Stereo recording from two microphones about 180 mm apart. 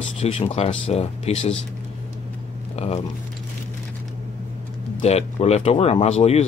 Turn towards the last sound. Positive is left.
turn(degrees=35)  # may be behind; listen again after turning